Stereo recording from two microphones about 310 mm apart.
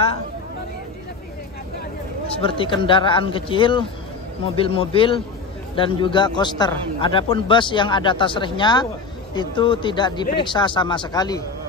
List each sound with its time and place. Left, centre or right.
2.2 s a man's voice: centre